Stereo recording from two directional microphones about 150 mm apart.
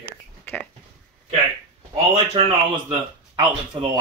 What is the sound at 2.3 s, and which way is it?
Speech, 30° right (ahead or behind).